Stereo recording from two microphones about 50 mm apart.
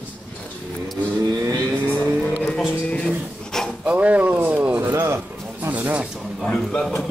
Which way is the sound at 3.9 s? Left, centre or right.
Right.